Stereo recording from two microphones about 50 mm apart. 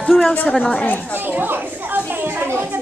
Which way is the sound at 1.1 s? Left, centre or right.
Right.